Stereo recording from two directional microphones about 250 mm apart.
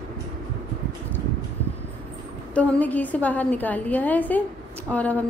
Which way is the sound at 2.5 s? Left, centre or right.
Centre.